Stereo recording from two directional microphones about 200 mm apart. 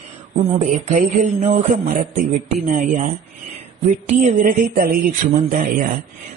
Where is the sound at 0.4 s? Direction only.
35° right (ahead or behind).